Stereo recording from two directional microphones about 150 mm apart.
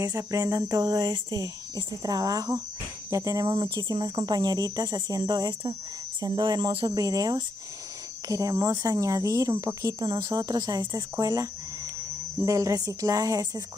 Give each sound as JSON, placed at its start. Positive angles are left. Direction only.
{"t": 0.0, "sound": "cricket", "side_deg": -25}
{"t": 12.4, "sound": "cricket", "side_deg": -25}